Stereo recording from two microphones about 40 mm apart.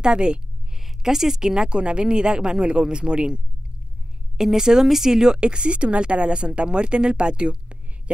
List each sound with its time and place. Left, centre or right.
0.0 s speech: right
0.8 s speech: centre
4.4 s speech: centre